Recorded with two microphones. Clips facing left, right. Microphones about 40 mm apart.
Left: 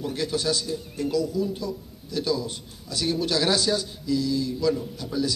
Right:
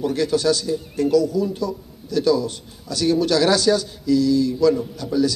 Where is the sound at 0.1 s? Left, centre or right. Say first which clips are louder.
Right 5 dB; centre.